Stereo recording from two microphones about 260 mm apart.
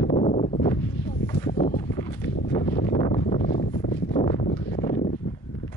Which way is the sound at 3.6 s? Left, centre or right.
Left.